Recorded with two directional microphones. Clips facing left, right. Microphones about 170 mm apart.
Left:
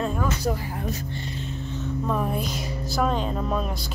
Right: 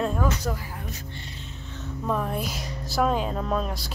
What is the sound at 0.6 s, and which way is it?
Speech, 35° left (ahead or behind).